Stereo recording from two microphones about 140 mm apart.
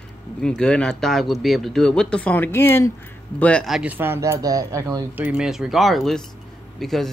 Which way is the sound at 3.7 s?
10° right (ahead or behind).